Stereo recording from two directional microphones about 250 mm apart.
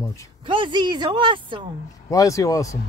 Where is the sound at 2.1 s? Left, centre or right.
Centre.